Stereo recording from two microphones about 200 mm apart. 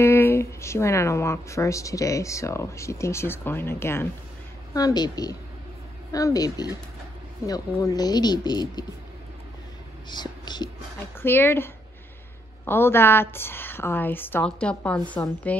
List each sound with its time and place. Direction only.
0.0 s speech: 10° left (ahead or behind)
10.0 s speech: 20° left (ahead or behind)
11.1 s speech: 10° left (ahead or behind)